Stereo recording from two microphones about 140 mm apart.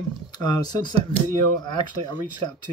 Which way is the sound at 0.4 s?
30° left (ahead or behind).